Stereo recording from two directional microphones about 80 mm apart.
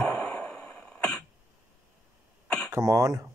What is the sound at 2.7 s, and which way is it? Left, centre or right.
Speech, right.